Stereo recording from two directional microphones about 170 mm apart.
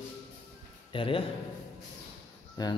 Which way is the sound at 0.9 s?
30° left (ahead or behind).